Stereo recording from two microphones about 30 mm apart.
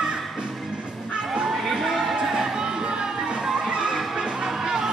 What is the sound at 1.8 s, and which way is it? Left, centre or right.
Music, centre.